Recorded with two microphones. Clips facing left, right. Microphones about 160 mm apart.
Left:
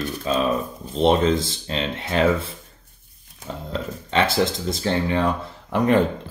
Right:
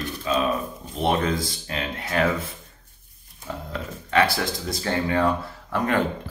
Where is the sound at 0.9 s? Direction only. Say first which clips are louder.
Left 5 dB; 25° left (ahead or behind).